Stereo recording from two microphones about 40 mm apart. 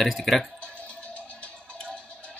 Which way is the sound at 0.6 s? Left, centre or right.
Left.